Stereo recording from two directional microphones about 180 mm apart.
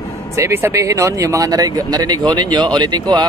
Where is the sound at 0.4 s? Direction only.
15° right (ahead or behind).